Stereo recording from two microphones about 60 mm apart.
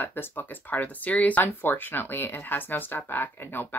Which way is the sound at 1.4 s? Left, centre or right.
Left.